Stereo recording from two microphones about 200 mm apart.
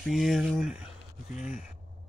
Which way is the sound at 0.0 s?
Centre (ahead or behind).